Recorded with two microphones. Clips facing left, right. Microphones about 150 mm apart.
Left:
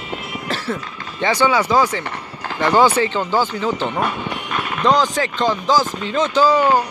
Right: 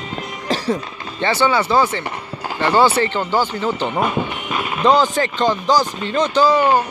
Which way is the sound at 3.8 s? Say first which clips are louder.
Right 2 dB; 10° right (ahead or behind).